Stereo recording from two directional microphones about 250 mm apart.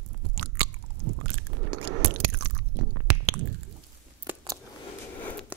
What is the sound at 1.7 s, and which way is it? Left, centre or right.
Biting, right.